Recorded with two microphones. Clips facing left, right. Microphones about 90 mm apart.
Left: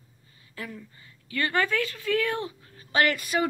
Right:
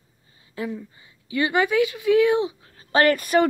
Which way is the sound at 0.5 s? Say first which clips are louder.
Right 9 dB; 20° right (ahead or behind).